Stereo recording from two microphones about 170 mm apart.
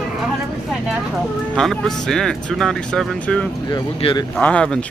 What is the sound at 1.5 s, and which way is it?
Speech, 5° left (ahead or behind).